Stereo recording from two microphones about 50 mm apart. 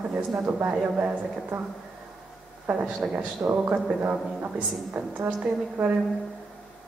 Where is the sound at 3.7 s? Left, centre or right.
Right.